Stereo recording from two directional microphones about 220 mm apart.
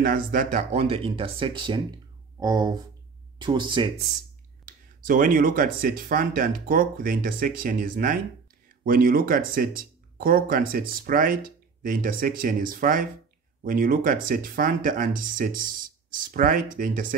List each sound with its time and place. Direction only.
0.0 s speech: 40° right (ahead or behind); by 3.9 s 20° right (ahead or behind)
5.0 s speech: 40° right (ahead or behind)